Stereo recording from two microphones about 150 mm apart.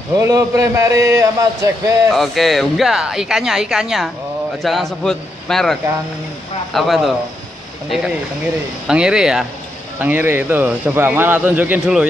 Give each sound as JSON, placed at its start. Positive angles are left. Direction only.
{"t": 0.1, "sound": "a man's voice", "side_deg": -20}
{"t": 2.1, "sound": "speech", "side_deg": 0}
{"t": 8.8, "sound": "a man's voice", "side_deg": -5}